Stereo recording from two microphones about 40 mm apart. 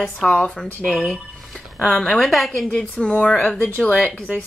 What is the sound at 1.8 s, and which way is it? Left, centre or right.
Speech, centre.